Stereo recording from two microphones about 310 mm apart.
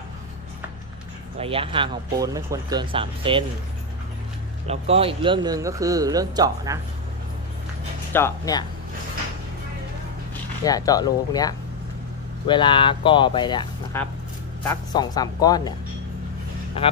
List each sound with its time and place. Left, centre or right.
1.4 s speech: centre
4.6 s speech: centre
8.1 s speech: centre
10.6 s speech: centre